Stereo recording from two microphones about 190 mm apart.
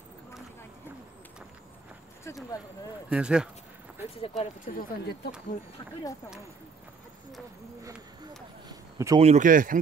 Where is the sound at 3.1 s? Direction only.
5° right (ahead or behind).